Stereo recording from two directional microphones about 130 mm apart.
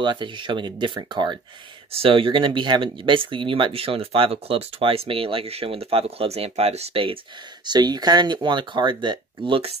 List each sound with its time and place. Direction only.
0.0 s speech: 35° right (ahead or behind)
1.9 s speech: 45° right (ahead or behind)
7.6 s speech: 30° right (ahead or behind)